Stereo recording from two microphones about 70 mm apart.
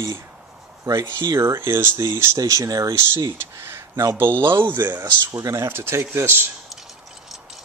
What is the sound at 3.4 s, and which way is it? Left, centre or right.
Speech, right.